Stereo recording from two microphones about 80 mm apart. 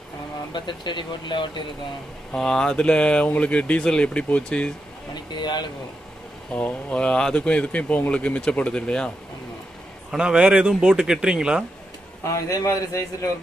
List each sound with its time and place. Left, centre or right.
0.5 s speech: left
2.3 s speech: centre
5.1 s speech: left
6.5 s speech: centre
10.1 s a man's voice: centre
12.2 s a man's voice: left